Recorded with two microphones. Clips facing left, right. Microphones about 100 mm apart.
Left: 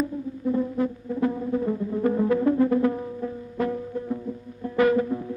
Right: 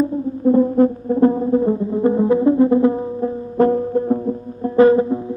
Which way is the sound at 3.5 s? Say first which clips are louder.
Right 13 dB; 45° right (ahead or behind).